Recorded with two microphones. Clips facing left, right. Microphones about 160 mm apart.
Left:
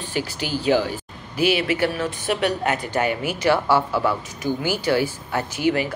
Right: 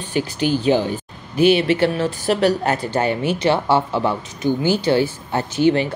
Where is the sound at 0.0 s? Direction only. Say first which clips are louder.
Right 6 dB; 20° right (ahead or behind).